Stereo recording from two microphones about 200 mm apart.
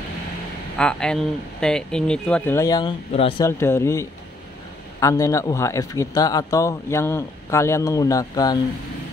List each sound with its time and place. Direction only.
0.7 s speech: 5° left (ahead or behind)
3.1 s speech: 30° left (ahead or behind)
3.4 s speech: 15° left (ahead or behind)